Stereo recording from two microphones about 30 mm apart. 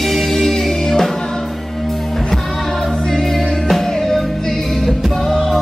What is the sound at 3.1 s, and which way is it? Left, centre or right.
Music, centre.